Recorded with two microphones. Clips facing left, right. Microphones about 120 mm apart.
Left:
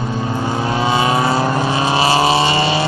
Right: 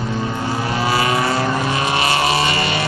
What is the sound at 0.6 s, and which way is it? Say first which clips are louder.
Vehicle: left 3 dB; 25° left (ahead or behind).